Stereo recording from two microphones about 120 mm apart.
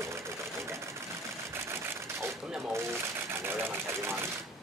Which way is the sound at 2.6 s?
20° right (ahead or behind).